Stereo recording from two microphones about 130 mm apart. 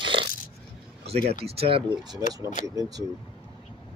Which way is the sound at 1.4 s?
50° right (ahead or behind).